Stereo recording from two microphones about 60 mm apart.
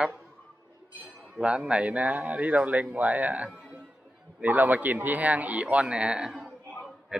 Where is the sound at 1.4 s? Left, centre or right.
Centre.